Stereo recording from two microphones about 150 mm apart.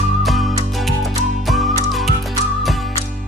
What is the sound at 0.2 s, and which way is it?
Music, centre (ahead or behind).